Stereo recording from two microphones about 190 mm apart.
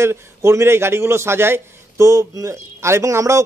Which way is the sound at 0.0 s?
15° right (ahead or behind).